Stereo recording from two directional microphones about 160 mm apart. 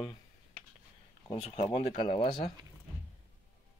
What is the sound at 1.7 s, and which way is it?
Speech, 35° left (ahead or behind).